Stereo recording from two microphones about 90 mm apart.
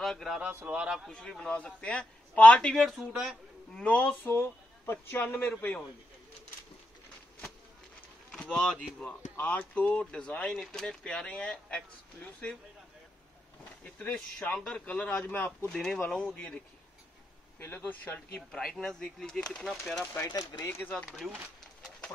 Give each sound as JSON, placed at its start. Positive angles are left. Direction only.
{"t": 0.0, "sound": "a sound", "side_deg": 5}
{"t": 0.3, "sound": "a man's voice", "side_deg": -15}
{"t": 1.0, "sound": "speech", "side_deg": 5}
{"t": 2.7, "sound": "speech", "side_deg": 0}
{"t": 3.1, "sound": "a man's voice", "side_deg": -15}
{"t": 3.7, "sound": "speech", "side_deg": 15}
{"t": 8.4, "sound": "speech", "side_deg": 5}
{"t": 13.8, "sound": "speech", "side_deg": 15}
{"t": 15.7, "sound": "speech", "side_deg": 5}
{"t": 17.6, "sound": "speech", "side_deg": 25}
{"t": 18.5, "sound": "speech", "side_deg": 5}
{"t": 20.2, "sound": "speech", "side_deg": 45}
{"t": 20.8, "sound": "speech", "side_deg": 15}